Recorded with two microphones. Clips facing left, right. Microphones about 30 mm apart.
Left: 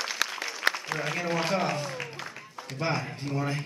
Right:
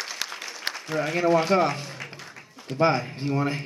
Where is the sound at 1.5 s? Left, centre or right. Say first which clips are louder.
Right 6 dB; right.